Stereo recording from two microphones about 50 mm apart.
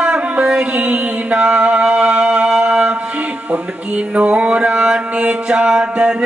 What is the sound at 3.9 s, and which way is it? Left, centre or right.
Mantra, right.